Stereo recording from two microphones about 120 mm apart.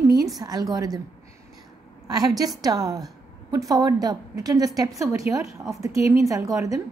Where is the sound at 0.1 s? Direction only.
30° right (ahead or behind).